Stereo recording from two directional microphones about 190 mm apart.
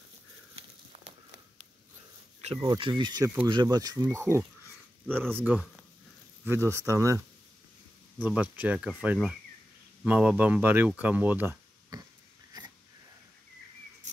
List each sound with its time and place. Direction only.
0.9 s walk: 30° right (ahead or behind)
2.6 s speech: 25° right (ahead or behind)
8.2 s speech: 10° right (ahead or behind)